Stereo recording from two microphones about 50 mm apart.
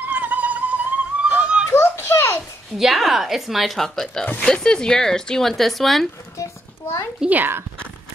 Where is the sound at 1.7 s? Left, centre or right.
Left.